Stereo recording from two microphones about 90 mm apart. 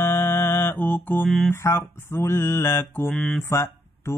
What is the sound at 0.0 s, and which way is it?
Mantra, 25° left (ahead or behind).